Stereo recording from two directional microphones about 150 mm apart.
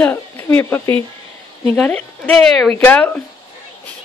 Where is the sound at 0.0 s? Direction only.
15° left (ahead or behind).